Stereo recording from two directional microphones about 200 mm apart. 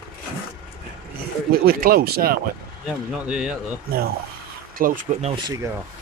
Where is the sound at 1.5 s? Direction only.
50° right (ahead or behind).